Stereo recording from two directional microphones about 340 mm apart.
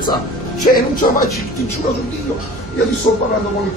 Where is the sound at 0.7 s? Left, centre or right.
Left.